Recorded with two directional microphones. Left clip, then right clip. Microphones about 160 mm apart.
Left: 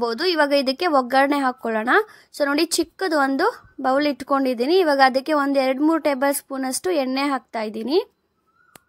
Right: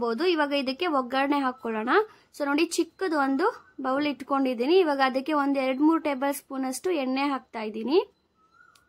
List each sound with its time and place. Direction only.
0.0 s speech: 30° left (ahead or behind)